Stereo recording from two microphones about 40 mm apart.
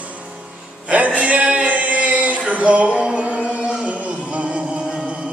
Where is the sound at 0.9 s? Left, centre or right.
Right.